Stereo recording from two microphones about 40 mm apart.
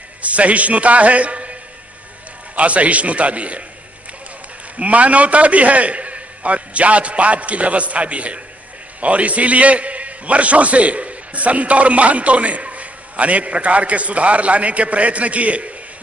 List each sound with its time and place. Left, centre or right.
0.2 s a man's voice: right
4.7 s a man's voice: right